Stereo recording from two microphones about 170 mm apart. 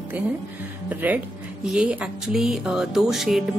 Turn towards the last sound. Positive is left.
turn(degrees=0)  # may be behind; listen again after turning